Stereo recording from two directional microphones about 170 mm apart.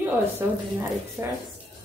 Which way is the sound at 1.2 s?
15° right (ahead or behind).